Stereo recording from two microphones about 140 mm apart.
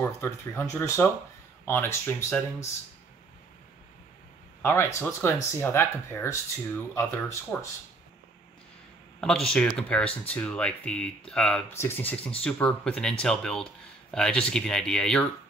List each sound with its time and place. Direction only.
0.0 s speech: 15° left (ahead or behind)
4.6 s speech: 15° left (ahead or behind)
9.2 s speech: 5° left (ahead or behind)